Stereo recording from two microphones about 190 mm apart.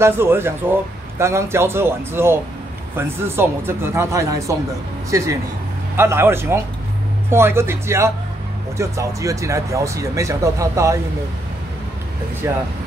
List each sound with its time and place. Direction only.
0.0 s a man's voice: 10° right (ahead or behind)
12.4 s a man's voice: 10° right (ahead or behind)